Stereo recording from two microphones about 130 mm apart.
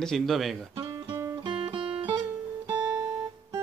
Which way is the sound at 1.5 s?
45° right (ahead or behind).